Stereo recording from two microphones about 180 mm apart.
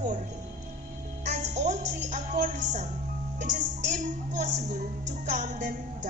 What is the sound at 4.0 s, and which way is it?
Speech, 45° right (ahead or behind).